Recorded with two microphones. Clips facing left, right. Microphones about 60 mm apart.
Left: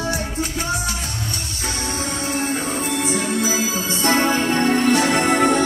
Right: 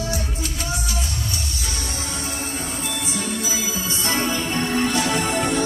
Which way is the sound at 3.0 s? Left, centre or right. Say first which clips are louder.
Left 7 dB; left.